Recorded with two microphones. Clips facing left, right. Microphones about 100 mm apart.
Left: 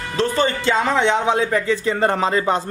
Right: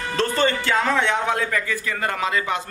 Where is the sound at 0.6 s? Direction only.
20° left (ahead or behind).